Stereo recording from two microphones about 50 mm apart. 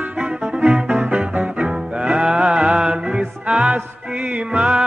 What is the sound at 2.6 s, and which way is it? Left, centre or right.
Music, centre.